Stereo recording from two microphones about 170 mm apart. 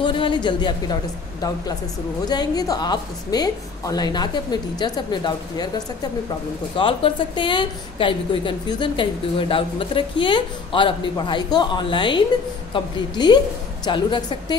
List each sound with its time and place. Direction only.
0.0 s speech: 30° left (ahead or behind)
2.2 s a woman's voice: 25° left (ahead or behind)
6.8 s a woman's voice: 30° left (ahead or behind)